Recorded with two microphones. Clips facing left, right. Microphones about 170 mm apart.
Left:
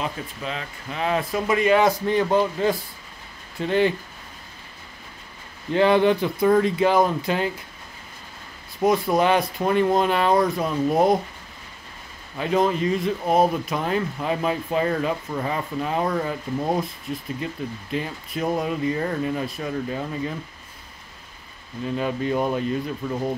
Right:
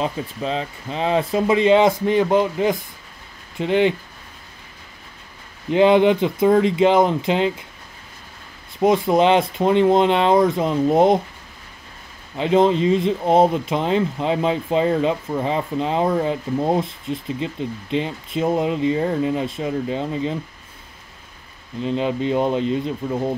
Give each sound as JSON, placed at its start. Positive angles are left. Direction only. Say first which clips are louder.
{"t": 0.0, "sound": "speech", "louder": "right 5 dB", "side_deg": -30}
{"t": 5.7, "sound": "speech", "louder": "right 4 dB", "side_deg": -20}
{"t": 8.7, "sound": "speech", "louder": "right 3 dB", "side_deg": -20}
{"t": 12.4, "sound": "speech", "louder": "right 5 dB", "side_deg": -25}
{"t": 21.8, "sound": "speech", "louder": "right 3 dB", "side_deg": -20}